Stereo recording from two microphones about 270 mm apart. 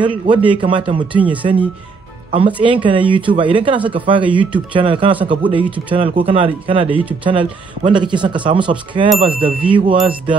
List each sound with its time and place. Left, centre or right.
0.0 s speech: centre
1.1 s speech: centre
2.3 s speech: centre